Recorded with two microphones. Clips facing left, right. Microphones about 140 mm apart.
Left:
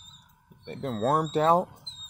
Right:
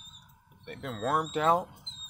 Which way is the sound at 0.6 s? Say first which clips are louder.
Left 6 dB; 30° left (ahead or behind).